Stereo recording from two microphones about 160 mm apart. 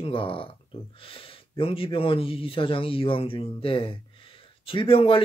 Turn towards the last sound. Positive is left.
turn(degrees=35)  # may be behind; listen again after turning